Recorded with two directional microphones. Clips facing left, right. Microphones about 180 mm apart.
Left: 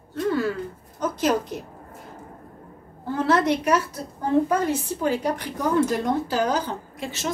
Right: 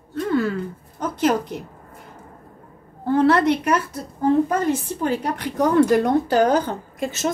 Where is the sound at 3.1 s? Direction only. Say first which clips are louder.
Right 4 dB; 60° right (ahead or behind).